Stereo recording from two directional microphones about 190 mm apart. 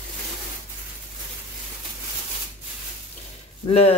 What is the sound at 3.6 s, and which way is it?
Speech, 30° left (ahead or behind).